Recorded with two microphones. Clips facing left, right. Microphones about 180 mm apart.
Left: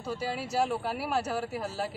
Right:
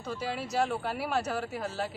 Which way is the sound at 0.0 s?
5° left (ahead or behind).